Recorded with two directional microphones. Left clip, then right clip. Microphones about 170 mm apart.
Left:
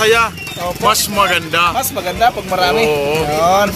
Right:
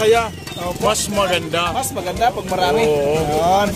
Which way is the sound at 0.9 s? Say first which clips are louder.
Left 5 dB; 5° left (ahead or behind).